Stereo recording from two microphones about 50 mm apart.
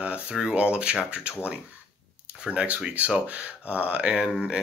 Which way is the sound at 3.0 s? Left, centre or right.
Right.